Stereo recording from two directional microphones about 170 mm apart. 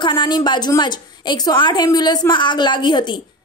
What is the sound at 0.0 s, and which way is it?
Speech, 25° left (ahead or behind).